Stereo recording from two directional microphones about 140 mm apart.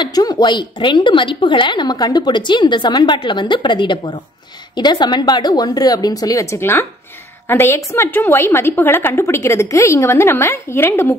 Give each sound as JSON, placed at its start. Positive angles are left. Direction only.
{"t": 0.0, "sound": "a woman's voice", "side_deg": 30}